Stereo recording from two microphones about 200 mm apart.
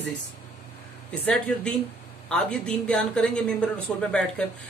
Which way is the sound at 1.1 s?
5° left (ahead or behind).